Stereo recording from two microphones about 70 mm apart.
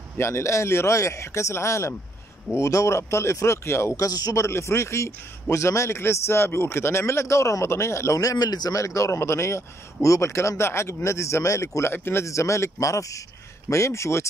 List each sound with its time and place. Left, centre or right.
0.2 s a man's voice: left
4.4 s a man's voice: left